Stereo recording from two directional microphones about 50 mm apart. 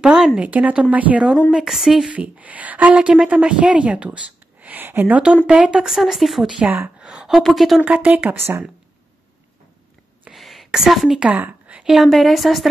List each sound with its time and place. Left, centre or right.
0.0 s a woman's voice: centre
0.4 s speech: right
1.5 s speech: centre
2.1 s a woman's voice: right
5.5 s speech: centre
7.0 s a sound: centre
7.2 s a woman's voice: centre
7.8 s speech: right
8.4 s speech: right
10.3 s a sound: centre
11.3 s a sound: right
11.8 s a woman's voice: centre